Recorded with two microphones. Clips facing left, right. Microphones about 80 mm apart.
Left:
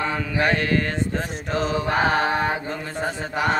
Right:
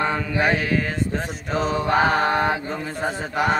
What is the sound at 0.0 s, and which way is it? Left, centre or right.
Mantra, centre.